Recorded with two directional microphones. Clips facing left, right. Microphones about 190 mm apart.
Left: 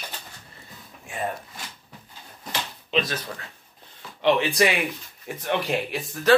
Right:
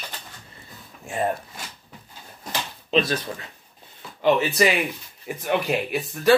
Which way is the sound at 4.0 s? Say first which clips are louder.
Right 1 dB; 5° right (ahead or behind).